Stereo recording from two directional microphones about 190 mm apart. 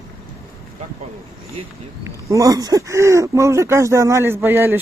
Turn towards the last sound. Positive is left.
turn(degrees=-10)  # may be behind; listen again after turning